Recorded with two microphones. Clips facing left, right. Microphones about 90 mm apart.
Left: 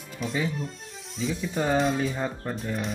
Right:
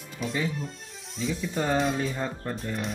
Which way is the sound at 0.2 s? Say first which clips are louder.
Left 1 dB; centre (ahead or behind).